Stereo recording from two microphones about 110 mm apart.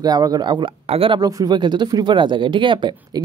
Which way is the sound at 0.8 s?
60° right (ahead or behind).